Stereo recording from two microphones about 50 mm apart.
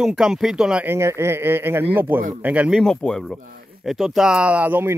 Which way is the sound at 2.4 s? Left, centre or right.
Right.